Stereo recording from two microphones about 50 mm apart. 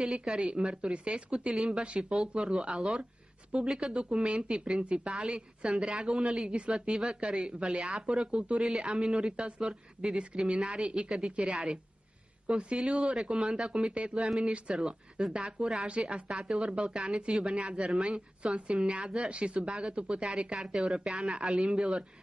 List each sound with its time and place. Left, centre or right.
0.0 s a man's voice: centre
10.6 s a man's voice: centre